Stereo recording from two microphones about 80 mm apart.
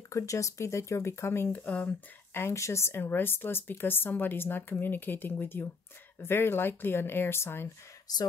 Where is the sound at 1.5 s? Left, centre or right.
Centre.